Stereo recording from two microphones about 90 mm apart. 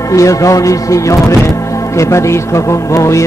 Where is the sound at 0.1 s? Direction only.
35° left (ahead or behind).